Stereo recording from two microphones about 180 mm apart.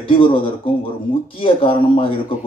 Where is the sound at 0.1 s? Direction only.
30° left (ahead or behind).